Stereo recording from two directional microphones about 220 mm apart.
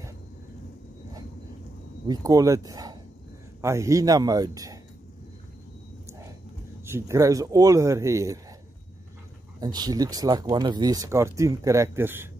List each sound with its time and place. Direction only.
2.0 s speech: 15° right (ahead or behind)
6.0 s a sound: 15° right (ahead or behind)
6.9 s speech: 10° right (ahead or behind)
9.6 s speech: 20° right (ahead or behind)